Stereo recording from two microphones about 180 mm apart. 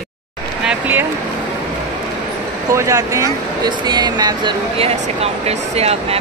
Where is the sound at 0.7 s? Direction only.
10° right (ahead or behind).